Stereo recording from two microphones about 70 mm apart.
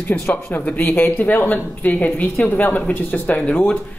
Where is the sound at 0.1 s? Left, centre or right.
Left.